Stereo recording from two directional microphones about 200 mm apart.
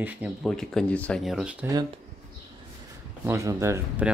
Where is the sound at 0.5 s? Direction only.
5° left (ahead or behind).